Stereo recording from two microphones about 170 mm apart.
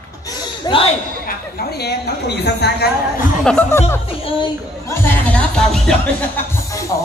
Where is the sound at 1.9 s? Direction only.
80° left.